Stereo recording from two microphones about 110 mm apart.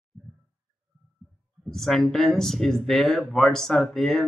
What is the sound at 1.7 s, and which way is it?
Speech, 5° left (ahead or behind).